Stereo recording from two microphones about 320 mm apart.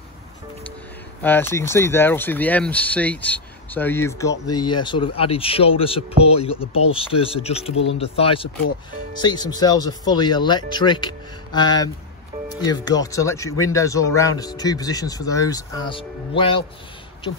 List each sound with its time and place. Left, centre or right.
1.2 s speech: centre
7.7 s speech: left
8.0 s speech: centre